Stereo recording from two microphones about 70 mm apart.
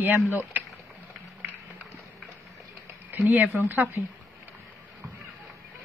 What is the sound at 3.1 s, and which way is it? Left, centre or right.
Speech, right.